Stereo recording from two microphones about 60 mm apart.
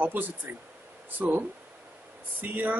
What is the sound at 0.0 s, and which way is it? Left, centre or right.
Speech, right.